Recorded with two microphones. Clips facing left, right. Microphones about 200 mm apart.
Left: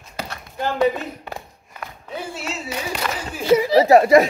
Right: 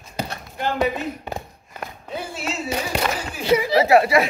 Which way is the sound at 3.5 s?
40° left (ahead or behind).